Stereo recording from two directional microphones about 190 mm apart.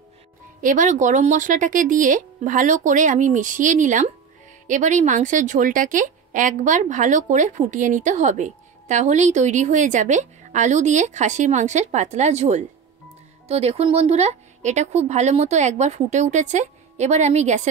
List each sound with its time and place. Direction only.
0.6 s a woman's voice: 45° right (ahead or behind)